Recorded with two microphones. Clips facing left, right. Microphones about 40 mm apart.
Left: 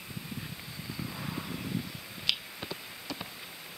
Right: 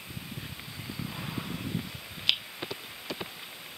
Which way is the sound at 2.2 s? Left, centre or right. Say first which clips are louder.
Right 4 dB; right.